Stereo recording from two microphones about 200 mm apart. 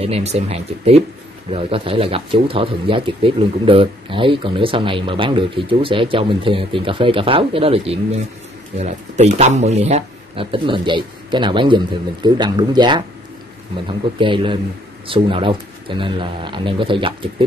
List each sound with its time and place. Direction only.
0.0 s speech: 30° right (ahead or behind)